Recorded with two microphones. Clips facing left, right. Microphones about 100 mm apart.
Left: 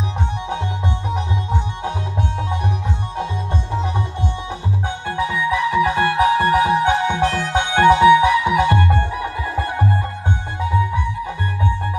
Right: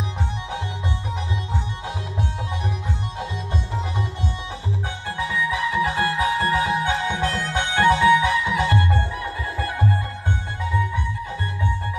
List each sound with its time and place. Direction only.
1.1 s music: 25° left (ahead or behind)
4.8 s music: 25° left (ahead or behind)